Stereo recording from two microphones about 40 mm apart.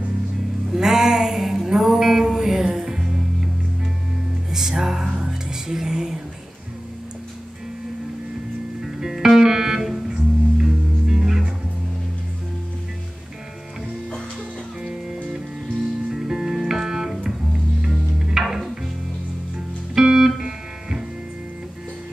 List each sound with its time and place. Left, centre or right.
0.7 s mantra: centre
4.5 s music: centre
8.8 s music: centre
14.8 s music: centre
20.0 s music: centre